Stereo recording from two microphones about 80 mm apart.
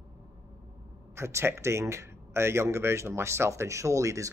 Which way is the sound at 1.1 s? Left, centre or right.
Right.